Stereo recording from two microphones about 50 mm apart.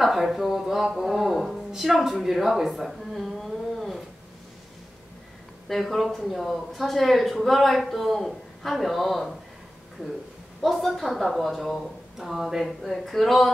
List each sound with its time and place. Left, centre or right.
0.0 s speech: centre
5.7 s speech: centre
10.6 s speech: centre